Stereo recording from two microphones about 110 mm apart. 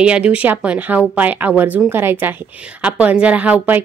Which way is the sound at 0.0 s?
10° right (ahead or behind).